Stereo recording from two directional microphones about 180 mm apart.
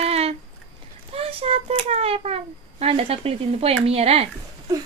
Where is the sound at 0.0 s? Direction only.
35° right (ahead or behind).